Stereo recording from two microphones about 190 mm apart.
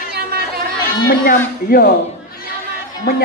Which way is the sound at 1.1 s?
50° left (ahead or behind).